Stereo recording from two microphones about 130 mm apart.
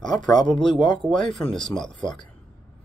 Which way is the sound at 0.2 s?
35° left (ahead or behind).